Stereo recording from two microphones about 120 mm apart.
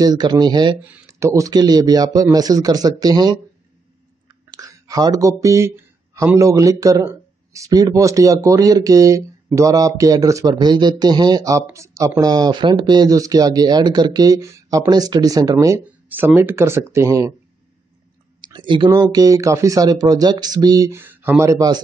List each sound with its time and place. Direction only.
0.0 s speech: 35° right (ahead or behind)
1.0 s speech: 25° right (ahead or behind)
4.3 s clicking: 30° right (ahead or behind)
5.4 s speech: 25° right (ahead or behind)
14.9 s speech: 35° right (ahead or behind)
15.8 s speech: 15° right (ahead or behind)
18.4 s speech: 40° right (ahead or behind)
20.9 s speech: 15° right (ahead or behind)